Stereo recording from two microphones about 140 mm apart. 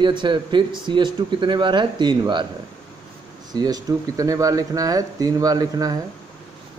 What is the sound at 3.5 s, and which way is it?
Speech, 30° right (ahead or behind).